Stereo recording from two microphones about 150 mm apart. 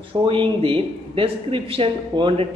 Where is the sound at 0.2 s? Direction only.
35° right (ahead or behind).